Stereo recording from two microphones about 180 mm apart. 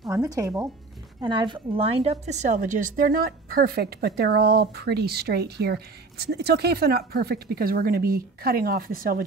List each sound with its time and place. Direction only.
0.0 s a woman's voice: 20° right (ahead or behind); by 9.2 s 55° right (ahead or behind)